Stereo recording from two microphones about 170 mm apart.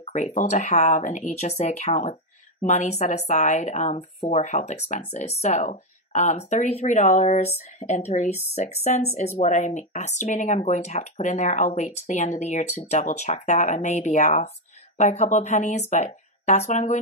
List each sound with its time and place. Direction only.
0.0 s a woman's voice: 40° left (ahead or behind)